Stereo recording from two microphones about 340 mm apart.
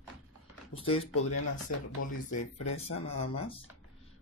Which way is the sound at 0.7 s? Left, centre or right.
Centre.